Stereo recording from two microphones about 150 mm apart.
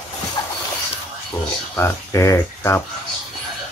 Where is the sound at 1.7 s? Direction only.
15° left (ahead or behind).